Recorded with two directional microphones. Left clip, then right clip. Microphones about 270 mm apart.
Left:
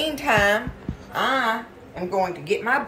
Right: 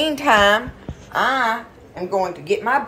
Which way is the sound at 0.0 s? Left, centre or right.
Centre.